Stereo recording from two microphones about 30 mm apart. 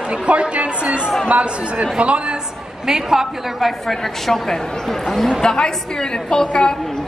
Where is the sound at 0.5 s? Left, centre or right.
Right.